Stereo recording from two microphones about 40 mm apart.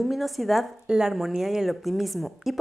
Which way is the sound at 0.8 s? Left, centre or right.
Centre.